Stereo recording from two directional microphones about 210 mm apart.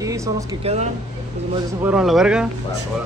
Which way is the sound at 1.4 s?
30° right (ahead or behind).